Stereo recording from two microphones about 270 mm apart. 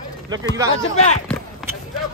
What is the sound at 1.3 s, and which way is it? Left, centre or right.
Clip-clop, centre.